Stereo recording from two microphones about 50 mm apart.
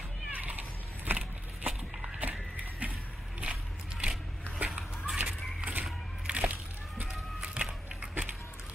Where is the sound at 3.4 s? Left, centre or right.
Right.